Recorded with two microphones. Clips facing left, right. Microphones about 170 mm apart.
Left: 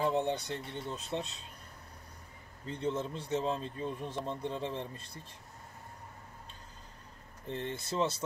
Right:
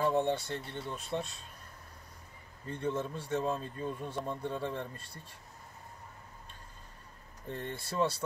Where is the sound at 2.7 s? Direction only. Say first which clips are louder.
Even; 20° left (ahead or behind).